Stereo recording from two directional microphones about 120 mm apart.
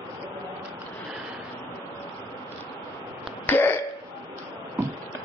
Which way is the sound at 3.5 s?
20° left (ahead or behind).